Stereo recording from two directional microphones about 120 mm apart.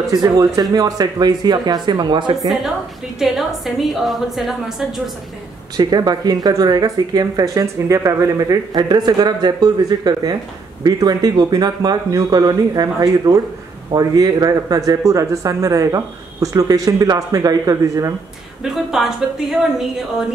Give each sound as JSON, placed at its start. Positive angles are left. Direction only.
{"t": 0.1, "sound": "speech", "side_deg": -30}
{"t": 2.4, "sound": "a woman's voice", "side_deg": -5}
{"t": 5.8, "sound": "speech", "side_deg": -35}
{"t": 18.6, "sound": "a woman's voice", "side_deg": -5}